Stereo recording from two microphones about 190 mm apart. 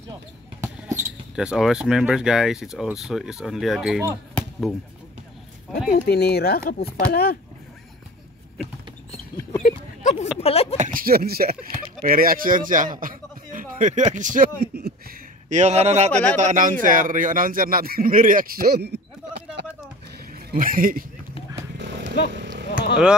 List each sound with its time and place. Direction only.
0.6 s basketball bounce: 15° right (ahead or behind)
1.3 s speech: 5° right (ahead or behind)
4.4 s basketball bounce: centre (ahead or behind)
5.9 s speech: 60° left (ahead or behind)
9.6 s a sound: 45° left (ahead or behind)
10.4 s speech: 30° left (ahead or behind)
10.8 s speech: 45° right (ahead or behind)
15.5 s speech: 35° right (ahead or behind)
16.1 s speech: 10° left (ahead or behind)
16.3 s speech: 40° right (ahead or behind); by 19.6 s 60° right (ahead or behind)
20.3 s speech: 45° right (ahead or behind)
21.7 s horse: 65° right (ahead or behind)